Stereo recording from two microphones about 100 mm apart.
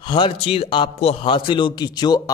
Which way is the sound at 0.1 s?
65° left (ahead or behind).